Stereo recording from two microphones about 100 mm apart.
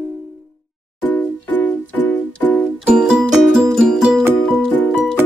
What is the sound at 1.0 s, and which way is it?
Music, 20° left (ahead or behind).